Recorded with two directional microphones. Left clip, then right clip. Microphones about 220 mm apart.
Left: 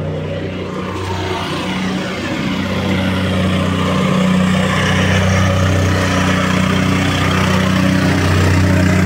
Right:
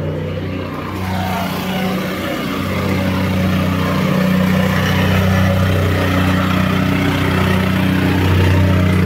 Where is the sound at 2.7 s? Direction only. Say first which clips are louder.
Left 1 dB; 10° right (ahead or behind).